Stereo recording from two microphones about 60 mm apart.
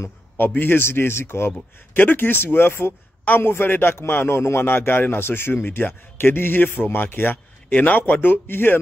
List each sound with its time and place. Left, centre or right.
0.5 s a man's voice: left
2.0 s a man's voice: left